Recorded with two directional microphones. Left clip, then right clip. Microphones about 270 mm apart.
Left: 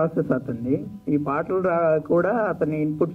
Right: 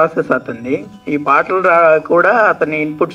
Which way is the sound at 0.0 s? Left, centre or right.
Centre.